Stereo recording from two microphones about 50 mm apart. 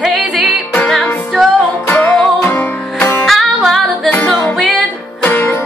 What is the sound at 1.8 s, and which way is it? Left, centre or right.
Music, left.